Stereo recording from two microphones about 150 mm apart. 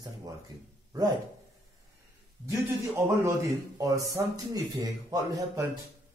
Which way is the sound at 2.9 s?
20° right (ahead or behind).